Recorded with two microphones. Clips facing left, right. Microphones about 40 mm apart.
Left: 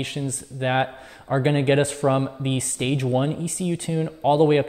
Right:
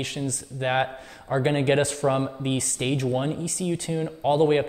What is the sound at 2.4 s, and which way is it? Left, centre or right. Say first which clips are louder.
Speech: left 1 dB; left.